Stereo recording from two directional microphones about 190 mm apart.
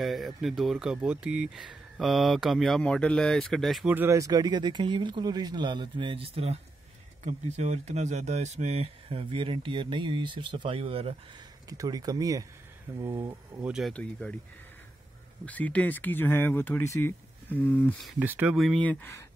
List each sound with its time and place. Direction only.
0.0 s speech: centre (ahead or behind); by 11.1 s 30° right (ahead or behind)
11.7 s speech: 20° right (ahead or behind); by 14.3 s 5° left (ahead or behind)
15.4 s speech: 10° left (ahead or behind)
18.2 s speech: 10° right (ahead or behind); by 19.2 s 10° left (ahead or behind)